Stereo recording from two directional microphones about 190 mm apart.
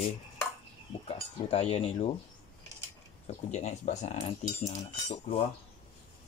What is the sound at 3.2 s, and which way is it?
Speech, 40° left (ahead or behind).